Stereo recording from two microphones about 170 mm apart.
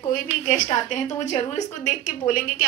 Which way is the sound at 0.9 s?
45° left (ahead or behind).